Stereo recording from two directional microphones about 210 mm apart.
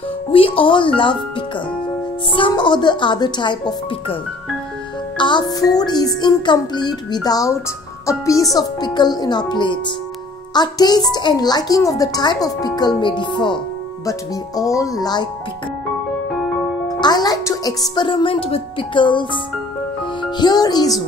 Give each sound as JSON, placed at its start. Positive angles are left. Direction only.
{"t": 0.3, "sound": "a woman's voice", "side_deg": 25}
{"t": 2.3, "sound": "a woman's voice", "side_deg": 25}
{"t": 17.0, "sound": "speech", "side_deg": 20}
{"t": 20.3, "sound": "a woman's voice", "side_deg": 20}